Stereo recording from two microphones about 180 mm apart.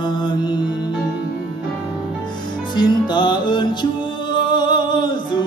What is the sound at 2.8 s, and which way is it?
Music, 25° left (ahead or behind).